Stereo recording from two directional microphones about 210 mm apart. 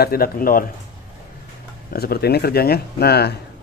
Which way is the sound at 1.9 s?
45° left (ahead or behind).